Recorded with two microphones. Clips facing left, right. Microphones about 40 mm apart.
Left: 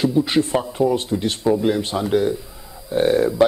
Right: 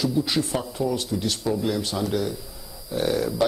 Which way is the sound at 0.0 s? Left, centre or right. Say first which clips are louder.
Left 6 dB; left.